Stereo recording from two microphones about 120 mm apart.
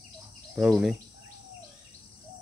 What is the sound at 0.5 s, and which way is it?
Speech, 5° right (ahead or behind).